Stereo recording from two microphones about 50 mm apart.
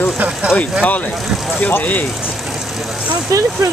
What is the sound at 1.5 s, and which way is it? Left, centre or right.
Speech, left.